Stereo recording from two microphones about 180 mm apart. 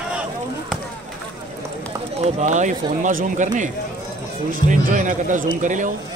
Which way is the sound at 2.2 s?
40° right (ahead or behind).